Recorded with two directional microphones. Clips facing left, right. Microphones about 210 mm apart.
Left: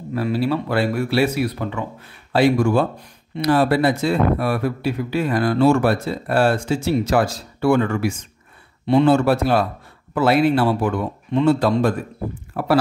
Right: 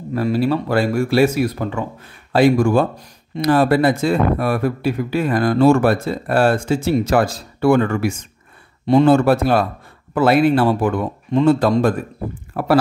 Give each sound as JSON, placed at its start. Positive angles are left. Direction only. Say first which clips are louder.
{"t": 0.1, "sound": "speech", "louder": "right 3 dB", "side_deg": -45}